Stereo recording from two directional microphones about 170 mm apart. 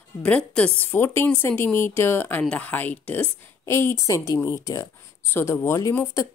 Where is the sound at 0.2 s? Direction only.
5° left (ahead or behind).